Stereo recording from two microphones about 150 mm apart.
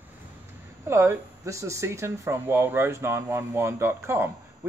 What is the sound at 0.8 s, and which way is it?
Speech, 15° right (ahead or behind).